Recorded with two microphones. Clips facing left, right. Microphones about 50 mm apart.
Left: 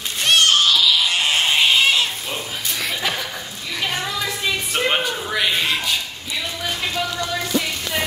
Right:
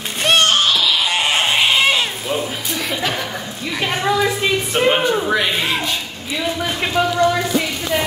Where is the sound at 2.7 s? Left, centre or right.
Centre.